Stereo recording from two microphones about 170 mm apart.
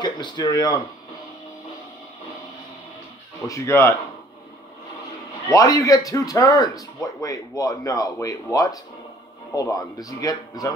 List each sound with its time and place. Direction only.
0.0 s speech: 25° left (ahead or behind)
3.4 s speech: 15° left (ahead or behind)
5.5 s speech: 20° left (ahead or behind)